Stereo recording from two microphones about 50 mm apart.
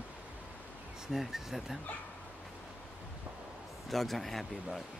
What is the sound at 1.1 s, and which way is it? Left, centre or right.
Speech, centre.